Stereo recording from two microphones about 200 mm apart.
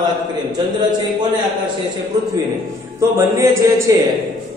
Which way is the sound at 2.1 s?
20° right (ahead or behind).